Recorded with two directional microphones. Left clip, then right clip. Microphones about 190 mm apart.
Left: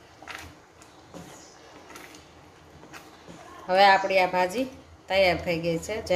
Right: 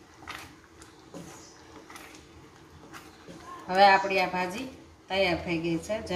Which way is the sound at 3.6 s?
55° left (ahead or behind).